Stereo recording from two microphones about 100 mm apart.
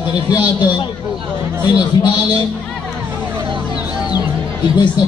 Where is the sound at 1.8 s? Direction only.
45° left (ahead or behind).